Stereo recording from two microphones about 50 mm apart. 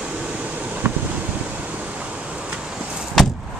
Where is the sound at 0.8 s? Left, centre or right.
Right.